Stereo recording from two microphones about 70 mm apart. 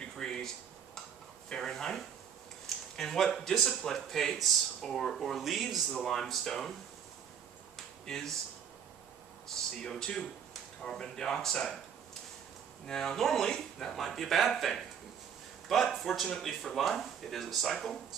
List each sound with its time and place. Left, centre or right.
0.0 s a sound: centre
1.5 s speech: centre
7.7 s finger snapping: centre
9.8 s speech: centre
16.0 s speech: centre